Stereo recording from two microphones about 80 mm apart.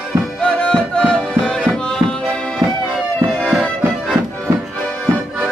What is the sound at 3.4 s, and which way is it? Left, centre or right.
Music, centre.